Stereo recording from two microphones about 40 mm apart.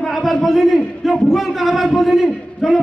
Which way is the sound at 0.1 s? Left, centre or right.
Centre.